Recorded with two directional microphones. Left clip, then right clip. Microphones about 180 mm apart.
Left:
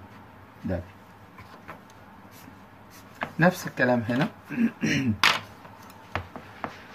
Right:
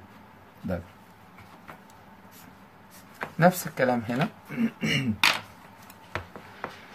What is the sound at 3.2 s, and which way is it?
Speech, 40° right (ahead or behind).